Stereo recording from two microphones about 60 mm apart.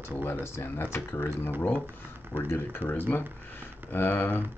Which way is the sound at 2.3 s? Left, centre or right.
Left.